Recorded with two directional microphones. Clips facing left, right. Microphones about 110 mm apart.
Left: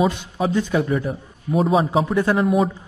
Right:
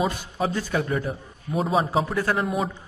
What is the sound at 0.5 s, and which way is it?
Speech, 15° left (ahead or behind).